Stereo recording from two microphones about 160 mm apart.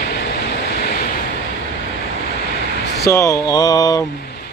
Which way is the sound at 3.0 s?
20° left (ahead or behind).